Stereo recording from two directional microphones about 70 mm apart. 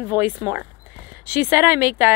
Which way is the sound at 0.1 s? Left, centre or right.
Right.